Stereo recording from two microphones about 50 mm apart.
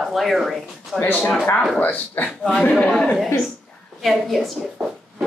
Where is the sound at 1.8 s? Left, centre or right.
Left.